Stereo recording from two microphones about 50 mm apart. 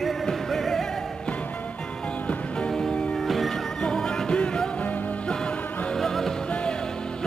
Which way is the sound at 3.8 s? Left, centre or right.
Centre.